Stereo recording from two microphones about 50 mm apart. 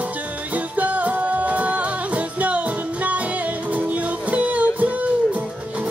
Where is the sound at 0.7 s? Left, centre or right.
Right.